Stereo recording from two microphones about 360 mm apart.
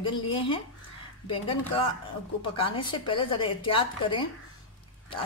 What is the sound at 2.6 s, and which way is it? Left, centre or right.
A woman's voice, centre.